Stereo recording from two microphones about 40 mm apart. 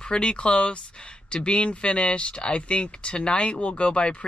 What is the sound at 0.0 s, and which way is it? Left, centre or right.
Speech, left.